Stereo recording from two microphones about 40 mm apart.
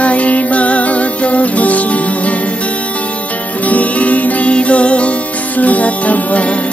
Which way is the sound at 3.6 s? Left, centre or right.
Left.